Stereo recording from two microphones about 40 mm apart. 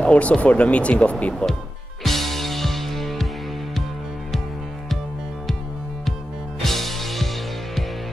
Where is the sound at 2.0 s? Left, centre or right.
Centre.